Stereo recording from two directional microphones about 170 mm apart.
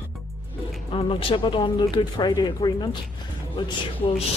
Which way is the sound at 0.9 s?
30° left (ahead or behind).